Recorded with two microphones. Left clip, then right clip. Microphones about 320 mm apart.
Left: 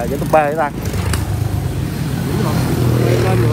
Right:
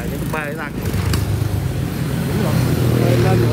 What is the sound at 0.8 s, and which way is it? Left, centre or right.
Vehicle, left.